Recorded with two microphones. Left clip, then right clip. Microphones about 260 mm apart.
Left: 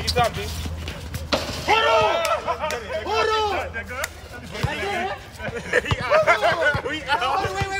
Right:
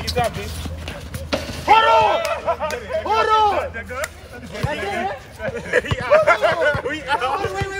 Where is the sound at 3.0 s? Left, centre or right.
Centre.